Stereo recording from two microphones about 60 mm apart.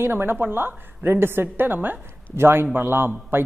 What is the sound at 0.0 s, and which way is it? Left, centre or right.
A woman's voice, right.